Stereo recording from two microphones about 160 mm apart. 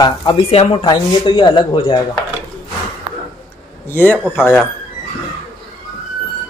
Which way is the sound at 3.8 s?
15° left (ahead or behind).